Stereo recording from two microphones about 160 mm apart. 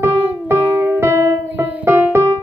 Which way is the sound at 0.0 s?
15° right (ahead or behind).